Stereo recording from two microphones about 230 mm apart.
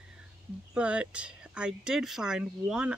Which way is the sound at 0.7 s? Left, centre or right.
Centre.